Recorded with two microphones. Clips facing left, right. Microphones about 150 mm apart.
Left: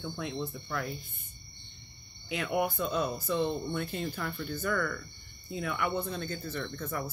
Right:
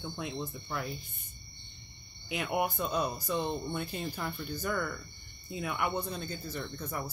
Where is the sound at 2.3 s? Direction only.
20° right (ahead or behind).